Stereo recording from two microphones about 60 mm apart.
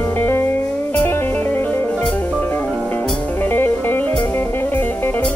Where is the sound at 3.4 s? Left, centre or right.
Left.